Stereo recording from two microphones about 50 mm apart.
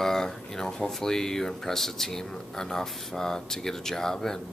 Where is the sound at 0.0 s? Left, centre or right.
Centre.